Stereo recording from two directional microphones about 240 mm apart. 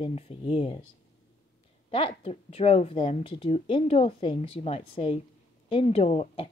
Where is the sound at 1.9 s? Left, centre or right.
Left.